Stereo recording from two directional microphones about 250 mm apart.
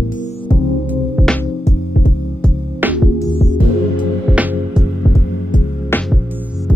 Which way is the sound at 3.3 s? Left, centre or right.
Left.